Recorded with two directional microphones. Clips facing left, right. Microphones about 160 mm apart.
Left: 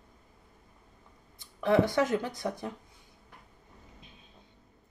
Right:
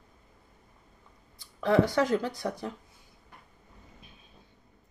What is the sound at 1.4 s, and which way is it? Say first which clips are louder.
Speech: right 1 dB; 20° left (ahead or behind).